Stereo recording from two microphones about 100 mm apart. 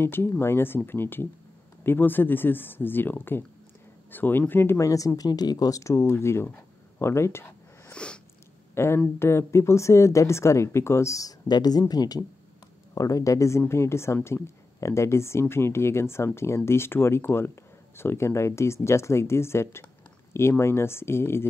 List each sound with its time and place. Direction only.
0.0 s speech: 25° left (ahead or behind)
7.9 s a sound: 10° left (ahead or behind)
8.7 s speech: 25° left (ahead or behind)